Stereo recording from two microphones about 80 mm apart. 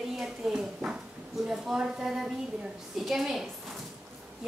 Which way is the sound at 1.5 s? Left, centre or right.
Centre.